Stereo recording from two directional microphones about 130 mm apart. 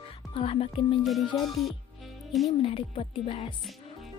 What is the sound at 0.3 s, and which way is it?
Speech, 45° left (ahead or behind).